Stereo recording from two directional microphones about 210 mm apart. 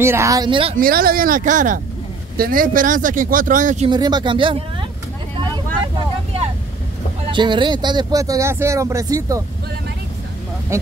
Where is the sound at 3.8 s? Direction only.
20° right (ahead or behind).